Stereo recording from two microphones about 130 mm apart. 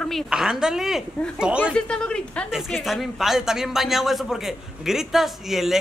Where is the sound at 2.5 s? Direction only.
5° right (ahead or behind).